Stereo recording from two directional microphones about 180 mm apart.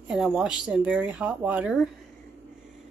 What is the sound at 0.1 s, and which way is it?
Speech, 5° right (ahead or behind).